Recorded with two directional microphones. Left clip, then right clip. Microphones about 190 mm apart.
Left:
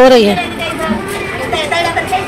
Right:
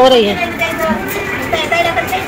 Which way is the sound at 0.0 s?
35° left (ahead or behind).